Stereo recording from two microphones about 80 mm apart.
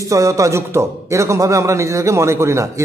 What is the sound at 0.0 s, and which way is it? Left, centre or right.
A man's voice, right.